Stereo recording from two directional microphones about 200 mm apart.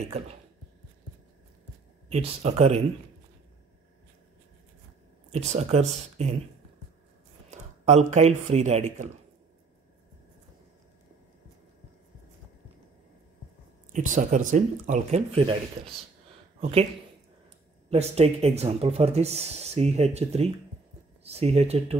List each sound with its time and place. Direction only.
2.0 s speech: 30° right (ahead or behind)
5.3 s speech: 35° right (ahead or behind)
7.5 s a sound: 35° right (ahead or behind)
8.1 s speech: 35° right (ahead or behind)
13.9 s speech: 40° right (ahead or behind)
17.8 s speech: 30° right (ahead or behind)